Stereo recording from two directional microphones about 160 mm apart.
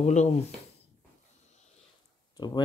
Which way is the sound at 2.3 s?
25° left (ahead or behind).